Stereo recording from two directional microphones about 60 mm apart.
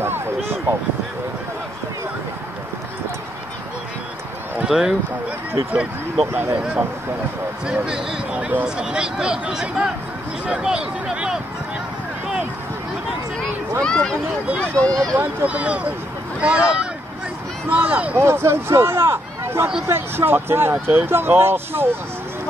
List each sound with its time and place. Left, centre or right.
4.6 s a man's voice: centre
6.5 s speech: right
7.6 s a man's voice: centre
13.8 s speech: centre
15.1 s speech: right
18.1 s speech: right